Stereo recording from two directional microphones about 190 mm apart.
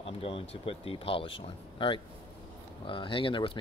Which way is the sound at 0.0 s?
30° left (ahead or behind).